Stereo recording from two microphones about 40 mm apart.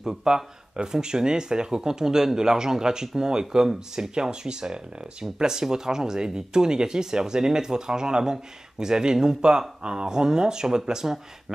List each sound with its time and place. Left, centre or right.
0.0 s speech: centre